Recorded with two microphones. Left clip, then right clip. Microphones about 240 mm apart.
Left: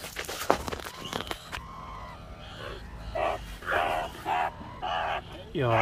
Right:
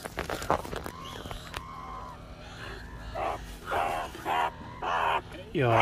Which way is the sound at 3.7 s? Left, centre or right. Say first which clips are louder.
Left 1 dB; centre.